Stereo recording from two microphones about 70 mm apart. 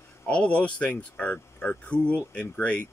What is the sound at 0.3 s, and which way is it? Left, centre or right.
Speech, centre.